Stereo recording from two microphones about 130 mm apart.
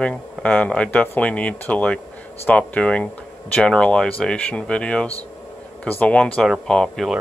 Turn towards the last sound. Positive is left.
turn(degrees=5)  # may be behind; listen again after turning